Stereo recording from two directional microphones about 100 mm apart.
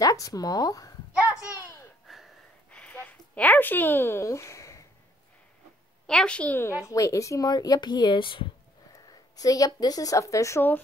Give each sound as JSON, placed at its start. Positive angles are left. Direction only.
{"t": 0.0, "sound": "speech", "side_deg": 35}
{"t": 2.0, "sound": "wheeze", "side_deg": 0}
{"t": 2.7, "sound": "a sound", "side_deg": 10}
{"t": 6.0, "sound": "a woman's voice", "side_deg": 10}
{"t": 6.9, "sound": "speech", "side_deg": 35}
{"t": 8.9, "sound": "a woman's voice", "side_deg": 35}